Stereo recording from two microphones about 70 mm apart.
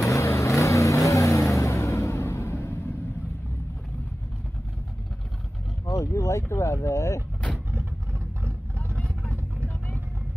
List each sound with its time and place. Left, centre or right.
0.0 s vehicle: left
5.9 s boat: left
7.5 s vehicle: right